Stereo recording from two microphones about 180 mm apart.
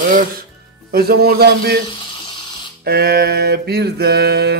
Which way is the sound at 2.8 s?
60° right (ahead or behind).